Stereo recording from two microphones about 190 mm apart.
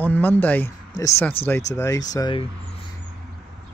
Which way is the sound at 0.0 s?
10° left (ahead or behind).